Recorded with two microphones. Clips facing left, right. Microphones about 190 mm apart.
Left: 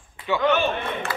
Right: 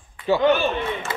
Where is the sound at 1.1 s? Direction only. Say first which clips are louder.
Even; 20° right (ahead or behind).